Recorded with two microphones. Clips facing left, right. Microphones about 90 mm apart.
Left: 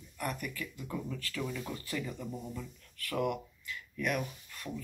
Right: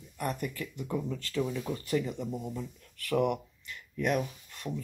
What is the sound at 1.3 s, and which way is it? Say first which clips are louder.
Speech: right 7 dB; 25° right (ahead or behind).